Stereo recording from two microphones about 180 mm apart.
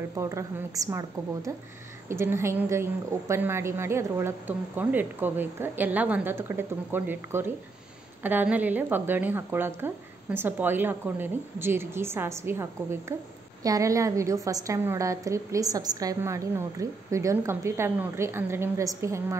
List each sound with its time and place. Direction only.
0.2 s a woman's voice: 15° right (ahead or behind)